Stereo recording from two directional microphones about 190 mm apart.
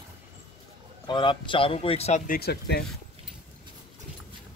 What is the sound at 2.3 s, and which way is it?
Speech, 55° left (ahead or behind).